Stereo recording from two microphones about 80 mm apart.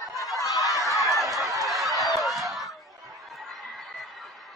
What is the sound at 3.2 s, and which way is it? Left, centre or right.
Chatter, centre.